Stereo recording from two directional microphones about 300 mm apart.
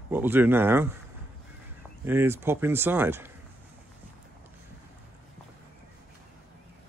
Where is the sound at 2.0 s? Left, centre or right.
Centre.